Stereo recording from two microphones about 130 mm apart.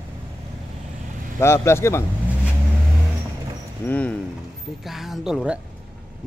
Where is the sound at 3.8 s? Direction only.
10° left (ahead or behind).